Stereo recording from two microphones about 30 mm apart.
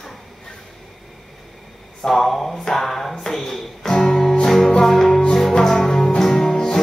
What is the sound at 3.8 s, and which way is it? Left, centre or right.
Music, centre.